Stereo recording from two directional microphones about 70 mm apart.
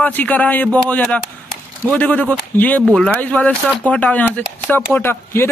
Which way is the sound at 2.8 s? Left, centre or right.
Centre.